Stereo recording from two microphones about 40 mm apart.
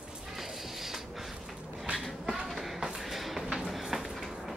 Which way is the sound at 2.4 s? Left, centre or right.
Centre.